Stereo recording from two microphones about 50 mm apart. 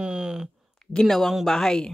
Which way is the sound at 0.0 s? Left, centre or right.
Centre.